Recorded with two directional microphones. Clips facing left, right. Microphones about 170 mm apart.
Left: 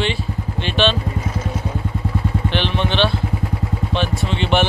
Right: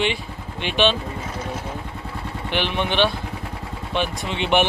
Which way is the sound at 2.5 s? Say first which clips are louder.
Right 1 dB; 15° right (ahead or behind).